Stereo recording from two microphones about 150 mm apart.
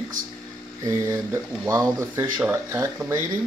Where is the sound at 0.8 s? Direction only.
20° right (ahead or behind).